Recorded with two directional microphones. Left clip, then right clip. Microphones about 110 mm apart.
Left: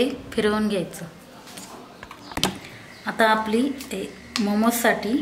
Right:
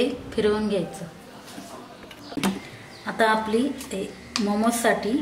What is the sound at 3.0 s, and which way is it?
A woman's voice, 15° left (ahead or behind).